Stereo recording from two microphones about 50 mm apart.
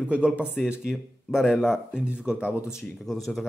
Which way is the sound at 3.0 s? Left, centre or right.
Centre.